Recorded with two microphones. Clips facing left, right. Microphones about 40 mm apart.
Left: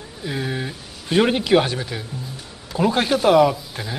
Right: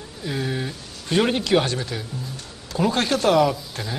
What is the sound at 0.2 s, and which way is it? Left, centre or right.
Speech, centre.